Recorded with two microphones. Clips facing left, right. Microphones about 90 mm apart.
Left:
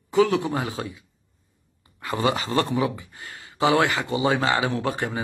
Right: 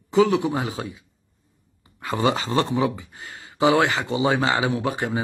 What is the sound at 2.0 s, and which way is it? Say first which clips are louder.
Speech: right 2 dB; 25° right (ahead or behind).